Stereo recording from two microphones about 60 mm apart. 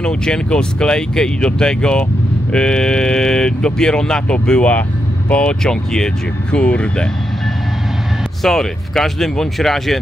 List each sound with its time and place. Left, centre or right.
0.0 s speech: centre
8.4 s speech: centre